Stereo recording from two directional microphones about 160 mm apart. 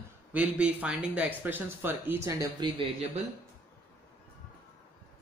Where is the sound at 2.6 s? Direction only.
35° right (ahead or behind).